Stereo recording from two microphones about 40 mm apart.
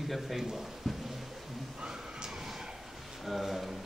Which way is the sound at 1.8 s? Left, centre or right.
Centre.